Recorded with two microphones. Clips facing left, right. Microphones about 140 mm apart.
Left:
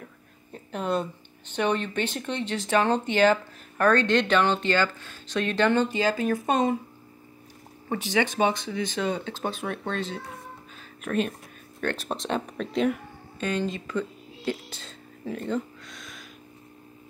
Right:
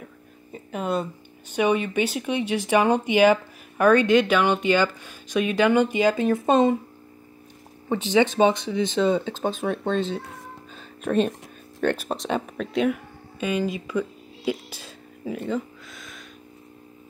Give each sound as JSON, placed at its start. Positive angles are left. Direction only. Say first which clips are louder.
{"t": 0.0, "sound": "a sound", "louder": "right 3 dB", "side_deg": -5}
{"t": 1.5, "sound": "speech", "louder": "right 4 dB", "side_deg": -10}
{"t": 7.9, "sound": "speech", "louder": "right 5 dB", "side_deg": -20}
{"t": 11.0, "sound": "speech", "louder": "right 5 dB", "side_deg": -30}
{"t": 12.0, "sound": "speech", "louder": "right 2 dB", "side_deg": 0}